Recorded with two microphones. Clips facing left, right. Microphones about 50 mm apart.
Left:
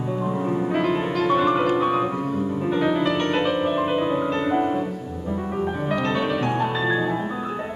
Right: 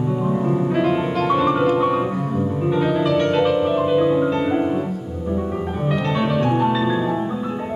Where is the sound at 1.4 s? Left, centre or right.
Centre.